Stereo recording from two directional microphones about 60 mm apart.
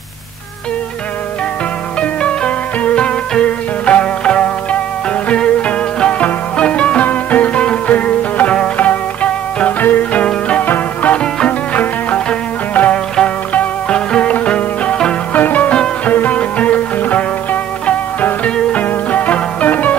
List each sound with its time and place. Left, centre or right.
2.0 s music: centre
15.3 s music: left